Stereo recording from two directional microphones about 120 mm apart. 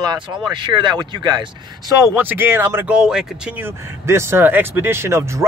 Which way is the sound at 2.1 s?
15° right (ahead or behind).